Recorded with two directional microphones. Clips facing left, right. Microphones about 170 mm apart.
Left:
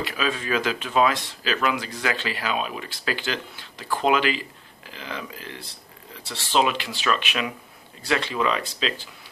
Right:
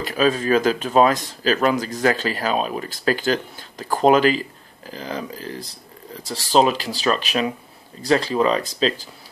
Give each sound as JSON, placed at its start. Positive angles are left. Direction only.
{"t": 0.0, "sound": "speech", "side_deg": -40}